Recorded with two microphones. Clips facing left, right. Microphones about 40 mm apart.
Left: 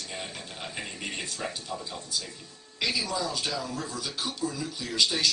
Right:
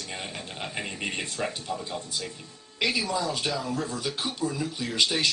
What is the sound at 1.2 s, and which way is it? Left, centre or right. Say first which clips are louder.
Speech: right 4 dB; right.